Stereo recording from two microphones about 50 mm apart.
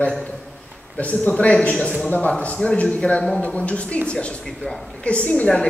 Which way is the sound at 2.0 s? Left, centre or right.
Left.